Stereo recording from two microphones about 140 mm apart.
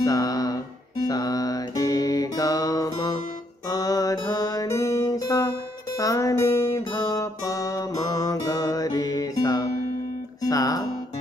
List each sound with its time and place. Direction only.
0.0 s music: 25° left (ahead or behind)